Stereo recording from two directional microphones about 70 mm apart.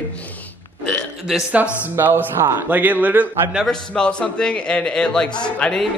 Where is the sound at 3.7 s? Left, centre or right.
Centre.